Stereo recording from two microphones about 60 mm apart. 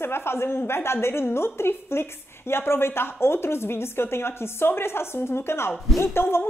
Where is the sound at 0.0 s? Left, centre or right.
Left.